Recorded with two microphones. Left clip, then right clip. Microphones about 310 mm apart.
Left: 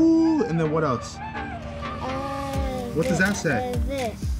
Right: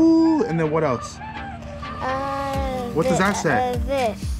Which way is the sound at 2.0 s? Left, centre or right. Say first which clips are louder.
Right 6 dB; centre.